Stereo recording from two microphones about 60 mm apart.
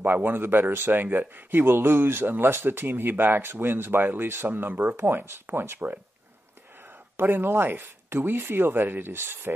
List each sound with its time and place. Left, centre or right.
0.0 s speech: right
7.2 s speech: right